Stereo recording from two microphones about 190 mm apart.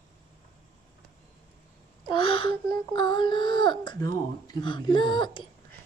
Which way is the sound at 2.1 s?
25° left (ahead or behind).